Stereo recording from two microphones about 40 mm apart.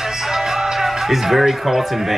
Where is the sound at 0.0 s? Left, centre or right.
Centre.